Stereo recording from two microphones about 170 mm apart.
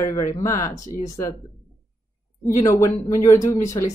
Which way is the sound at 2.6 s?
20° left (ahead or behind).